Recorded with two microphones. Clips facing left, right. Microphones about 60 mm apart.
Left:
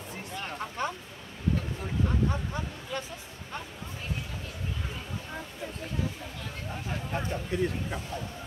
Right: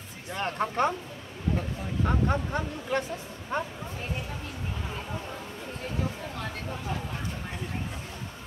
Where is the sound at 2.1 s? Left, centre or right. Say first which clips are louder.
Right 7 dB; right.